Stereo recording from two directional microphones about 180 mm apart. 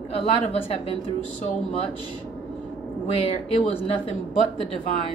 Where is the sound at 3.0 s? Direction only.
30° left (ahead or behind).